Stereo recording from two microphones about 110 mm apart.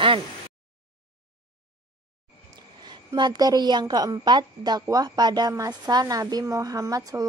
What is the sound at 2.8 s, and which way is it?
Speech, 45° right (ahead or behind).